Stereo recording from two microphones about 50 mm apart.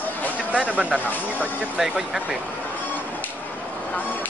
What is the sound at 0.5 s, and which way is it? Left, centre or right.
Speech, right.